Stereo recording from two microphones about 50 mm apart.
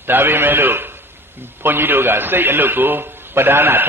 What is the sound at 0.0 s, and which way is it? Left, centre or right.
A man's voice, right.